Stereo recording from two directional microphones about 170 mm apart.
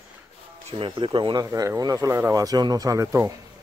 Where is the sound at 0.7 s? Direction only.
30° right (ahead or behind).